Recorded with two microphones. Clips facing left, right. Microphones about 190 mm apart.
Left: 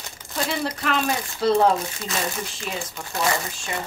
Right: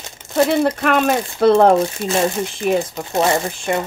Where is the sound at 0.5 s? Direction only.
55° right (ahead or behind).